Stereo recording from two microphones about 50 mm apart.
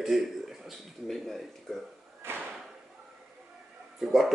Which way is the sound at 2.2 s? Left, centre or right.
Right.